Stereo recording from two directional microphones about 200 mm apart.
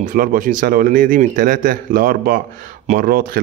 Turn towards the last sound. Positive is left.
turn(degrees=-45)  # may be behind; listen again after turning